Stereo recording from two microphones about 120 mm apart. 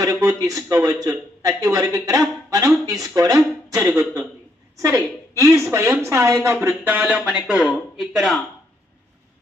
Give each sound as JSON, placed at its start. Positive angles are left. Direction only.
{"t": 0.0, "sound": "a woman's voice", "side_deg": -25}